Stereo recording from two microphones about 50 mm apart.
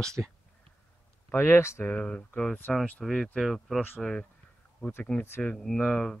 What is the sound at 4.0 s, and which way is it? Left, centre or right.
Speech, centre.